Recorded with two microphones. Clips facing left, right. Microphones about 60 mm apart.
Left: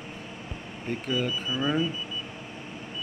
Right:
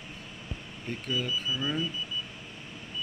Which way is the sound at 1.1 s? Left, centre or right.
Left.